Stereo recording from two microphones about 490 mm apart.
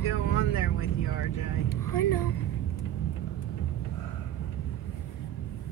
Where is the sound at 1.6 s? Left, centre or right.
Left.